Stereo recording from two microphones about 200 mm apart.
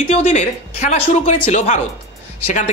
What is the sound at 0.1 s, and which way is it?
Speech, 35° left (ahead or behind).